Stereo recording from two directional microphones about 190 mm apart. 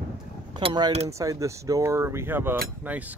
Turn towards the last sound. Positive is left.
turn(degrees=-10)  # may be behind; listen again after turning